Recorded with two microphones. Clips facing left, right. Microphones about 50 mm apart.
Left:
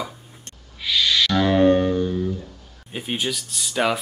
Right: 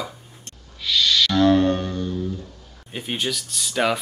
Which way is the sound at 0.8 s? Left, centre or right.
Centre.